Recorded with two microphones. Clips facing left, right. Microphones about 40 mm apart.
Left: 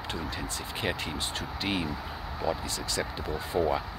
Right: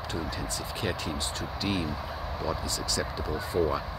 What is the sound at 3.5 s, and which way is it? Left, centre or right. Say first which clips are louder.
Speech: even; centre.